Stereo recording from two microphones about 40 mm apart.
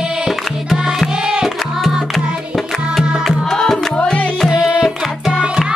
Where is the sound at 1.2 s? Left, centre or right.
Centre.